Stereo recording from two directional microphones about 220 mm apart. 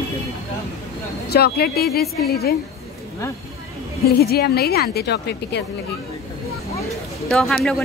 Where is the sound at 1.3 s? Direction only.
45° left (ahead or behind).